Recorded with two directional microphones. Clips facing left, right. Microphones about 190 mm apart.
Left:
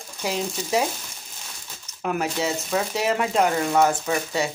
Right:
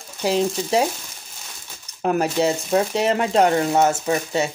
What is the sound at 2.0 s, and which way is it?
Speech, 35° right (ahead or behind).